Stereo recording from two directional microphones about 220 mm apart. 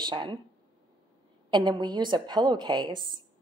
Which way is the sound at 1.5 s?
20° right (ahead or behind).